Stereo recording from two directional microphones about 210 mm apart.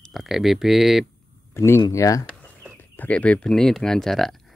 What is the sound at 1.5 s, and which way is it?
Speech, 10° left (ahead or behind).